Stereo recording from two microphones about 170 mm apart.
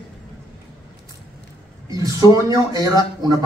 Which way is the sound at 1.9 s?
20° right (ahead or behind).